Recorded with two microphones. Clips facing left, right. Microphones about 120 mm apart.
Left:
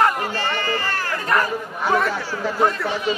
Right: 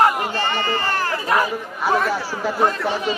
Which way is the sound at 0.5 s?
30° right (ahead or behind).